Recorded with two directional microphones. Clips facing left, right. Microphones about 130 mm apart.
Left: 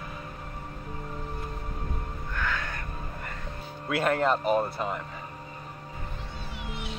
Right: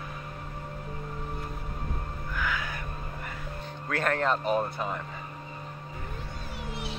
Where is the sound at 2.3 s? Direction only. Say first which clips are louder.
Even; centre (ahead or behind).